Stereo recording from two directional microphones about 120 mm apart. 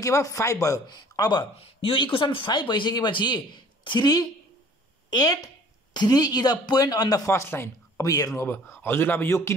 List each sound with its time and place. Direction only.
0.0 s speech: 25° left (ahead or behind)
1.6 s speech: 50° left (ahead or behind); by 9.5 s 20° left (ahead or behind)